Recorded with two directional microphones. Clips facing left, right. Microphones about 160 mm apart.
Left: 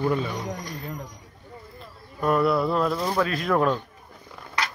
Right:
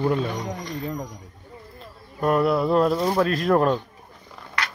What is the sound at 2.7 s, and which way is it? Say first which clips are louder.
Speech: right 5 dB; 45° right (ahead or behind).